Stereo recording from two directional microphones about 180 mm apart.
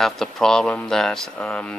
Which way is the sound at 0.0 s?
Centre (ahead or behind).